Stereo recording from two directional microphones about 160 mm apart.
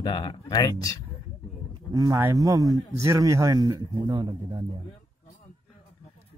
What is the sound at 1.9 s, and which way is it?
Speech, 25° right (ahead or behind).